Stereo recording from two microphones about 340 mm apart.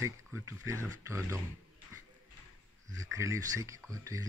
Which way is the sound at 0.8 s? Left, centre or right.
Centre.